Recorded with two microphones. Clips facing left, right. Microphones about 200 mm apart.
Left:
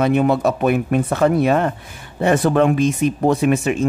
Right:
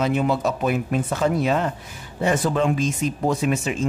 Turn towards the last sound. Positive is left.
turn(degrees=60)  # may be behind; listen again after turning